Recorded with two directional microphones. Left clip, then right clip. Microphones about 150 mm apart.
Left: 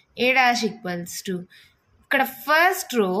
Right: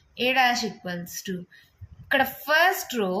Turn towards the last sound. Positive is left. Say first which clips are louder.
# left 3 dB
turn(degrees=45)  # may be behind; listen again after turning